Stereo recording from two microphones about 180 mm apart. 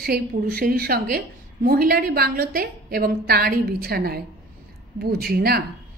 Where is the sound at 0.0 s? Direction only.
60° right (ahead or behind).